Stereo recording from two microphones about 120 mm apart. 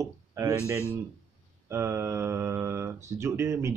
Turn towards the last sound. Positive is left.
turn(degrees=-25)  # may be behind; listen again after turning